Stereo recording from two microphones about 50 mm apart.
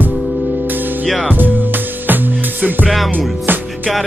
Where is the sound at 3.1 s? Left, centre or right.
Right.